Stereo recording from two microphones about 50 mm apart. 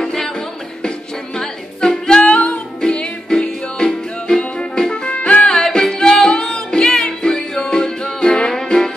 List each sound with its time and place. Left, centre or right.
0.0 s music: centre